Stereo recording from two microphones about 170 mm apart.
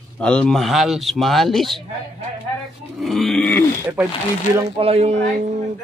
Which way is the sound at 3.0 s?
Centre (ahead or behind).